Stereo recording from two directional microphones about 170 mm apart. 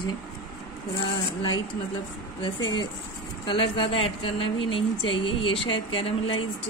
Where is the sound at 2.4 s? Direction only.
25° left (ahead or behind).